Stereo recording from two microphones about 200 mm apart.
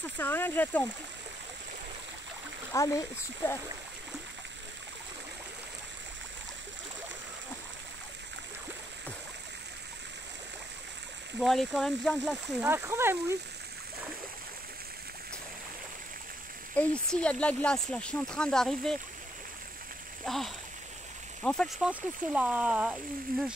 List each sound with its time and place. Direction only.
0.2 s speech: 10° left (ahead or behind)
2.7 s speech: 15° left (ahead or behind)
11.4 s speech: centre (ahead or behind)
12.6 s speech: 10° right (ahead or behind)
16.7 s speech: 5° left (ahead or behind)
20.2 s speech: centre (ahead or behind)